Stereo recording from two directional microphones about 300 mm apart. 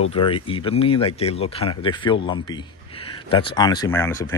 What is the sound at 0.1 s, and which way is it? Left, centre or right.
A man's voice, centre.